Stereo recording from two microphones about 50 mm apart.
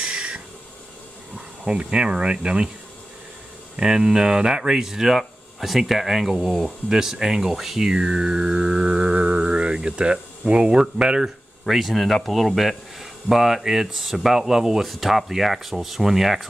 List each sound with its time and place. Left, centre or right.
0.0 s a sound: centre
1.6 s speech: centre
3.7 s speech: centre
11.6 s speech: centre